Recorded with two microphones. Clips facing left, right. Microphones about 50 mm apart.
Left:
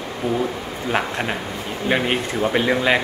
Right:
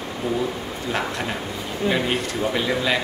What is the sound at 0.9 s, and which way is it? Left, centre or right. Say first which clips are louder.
Speech: left 3 dB; left.